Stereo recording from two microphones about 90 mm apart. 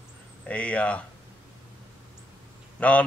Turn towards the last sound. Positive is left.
turn(degrees=15)  # may be behind; listen again after turning